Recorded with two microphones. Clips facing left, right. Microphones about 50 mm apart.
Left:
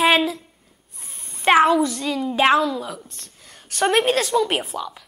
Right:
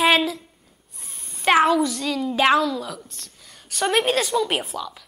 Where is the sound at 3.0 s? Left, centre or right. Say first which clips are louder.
Even; left.